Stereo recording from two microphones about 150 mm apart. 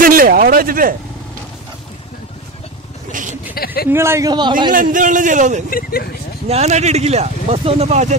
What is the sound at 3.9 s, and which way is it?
Speech, 15° right (ahead or behind).